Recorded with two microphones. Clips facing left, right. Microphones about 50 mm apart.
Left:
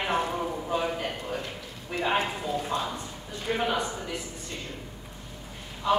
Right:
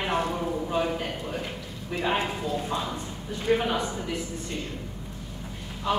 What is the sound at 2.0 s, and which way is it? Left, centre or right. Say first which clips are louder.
Speech: even; centre.